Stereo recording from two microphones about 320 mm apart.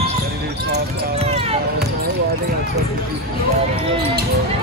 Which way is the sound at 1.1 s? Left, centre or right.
Centre.